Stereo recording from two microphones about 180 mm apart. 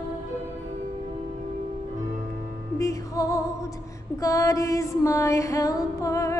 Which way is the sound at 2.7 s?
20° left (ahead or behind).